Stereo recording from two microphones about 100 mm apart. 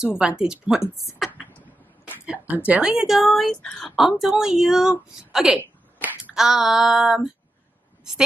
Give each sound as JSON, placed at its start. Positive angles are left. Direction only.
{"t": 0.0, "sound": "speech", "side_deg": -5}
{"t": 1.5, "sound": "a sound", "side_deg": 15}
{"t": 2.2, "sound": "a woman's voice", "side_deg": -15}
{"t": 3.9, "sound": "a woman's voice", "side_deg": -5}
{"t": 5.6, "sound": "a sound", "side_deg": -15}
{"t": 6.3, "sound": "speech", "side_deg": -5}